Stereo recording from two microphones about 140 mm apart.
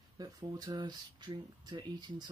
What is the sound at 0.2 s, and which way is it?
Speech, 30° right (ahead or behind).